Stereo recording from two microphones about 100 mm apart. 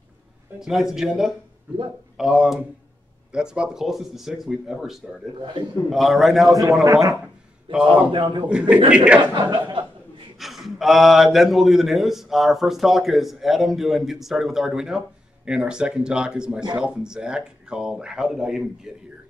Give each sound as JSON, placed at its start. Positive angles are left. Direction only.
{"t": 0.6, "sound": "a man's voice", "side_deg": -5}
{"t": 5.4, "sound": "a man's voice", "side_deg": -50}
{"t": 5.9, "sound": "a man's voice", "side_deg": 0}
{"t": 7.7, "sound": "speech", "side_deg": -10}
{"t": 8.1, "sound": "a man's voice", "side_deg": -55}
{"t": 8.5, "sound": "speech", "side_deg": -10}
{"t": 9.3, "sound": "a man's voice", "side_deg": -50}
{"t": 10.4, "sound": "a man's voice", "side_deg": 0}